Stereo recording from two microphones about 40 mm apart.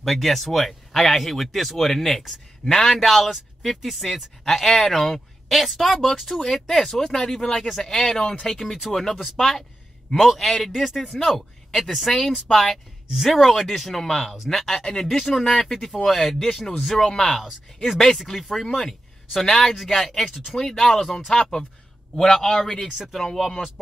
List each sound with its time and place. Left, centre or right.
0.0 s a man's voice: centre
18.8 s a sound: centre
19.8 s a man's voice: centre
22.8 s speech: centre
23.1 s a man's voice: centre